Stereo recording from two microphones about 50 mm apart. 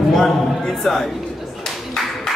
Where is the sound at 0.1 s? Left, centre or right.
Centre.